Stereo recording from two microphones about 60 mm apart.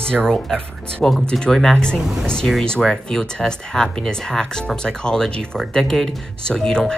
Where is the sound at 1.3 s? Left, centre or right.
Centre.